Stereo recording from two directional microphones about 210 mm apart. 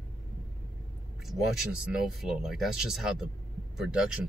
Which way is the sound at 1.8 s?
Centre (ahead or behind).